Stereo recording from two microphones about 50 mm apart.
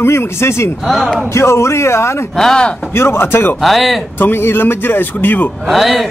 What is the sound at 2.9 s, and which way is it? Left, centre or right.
Speech, left.